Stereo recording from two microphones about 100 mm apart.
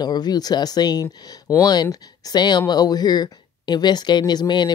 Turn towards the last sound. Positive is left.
turn(degrees=45)  # may be behind; listen again after turning